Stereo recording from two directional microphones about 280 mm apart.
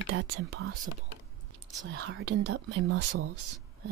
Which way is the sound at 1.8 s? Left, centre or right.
Right.